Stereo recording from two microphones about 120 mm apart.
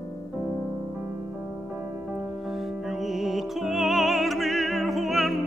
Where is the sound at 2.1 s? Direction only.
5° right (ahead or behind).